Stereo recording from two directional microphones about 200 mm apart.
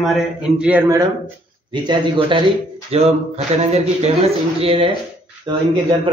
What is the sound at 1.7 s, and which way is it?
A man's voice, 25° right (ahead or behind).